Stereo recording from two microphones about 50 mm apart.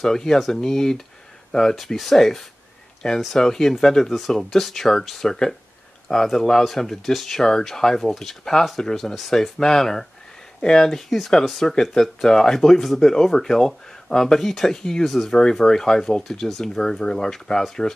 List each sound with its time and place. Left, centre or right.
0.0 s speech: centre
15.0 s speech: centre
15.3 s speech: centre